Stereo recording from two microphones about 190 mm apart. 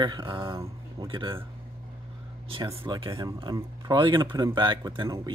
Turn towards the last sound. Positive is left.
turn(degrees=-25)  # may be behind; listen again after turning